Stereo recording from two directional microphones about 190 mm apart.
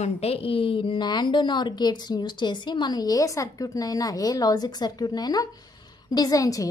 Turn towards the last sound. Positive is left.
turn(degrees=20)  # may be behind; listen again after turning